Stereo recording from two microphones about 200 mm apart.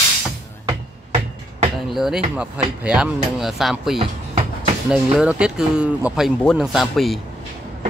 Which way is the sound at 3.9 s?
30° right (ahead or behind).